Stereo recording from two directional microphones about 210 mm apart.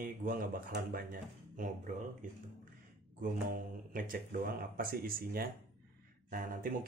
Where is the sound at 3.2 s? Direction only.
40° right (ahead or behind).